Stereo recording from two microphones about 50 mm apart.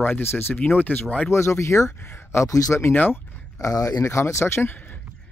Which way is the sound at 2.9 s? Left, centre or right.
Left.